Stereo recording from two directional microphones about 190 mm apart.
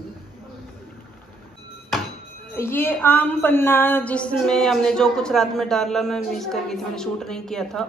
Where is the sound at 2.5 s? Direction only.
10° left (ahead or behind).